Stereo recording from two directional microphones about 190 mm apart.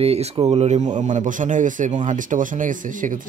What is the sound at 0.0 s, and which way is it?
A man's voice, 35° right (ahead or behind).